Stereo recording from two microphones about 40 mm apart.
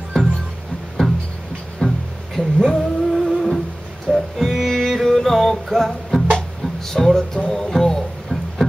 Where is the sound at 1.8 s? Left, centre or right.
Left.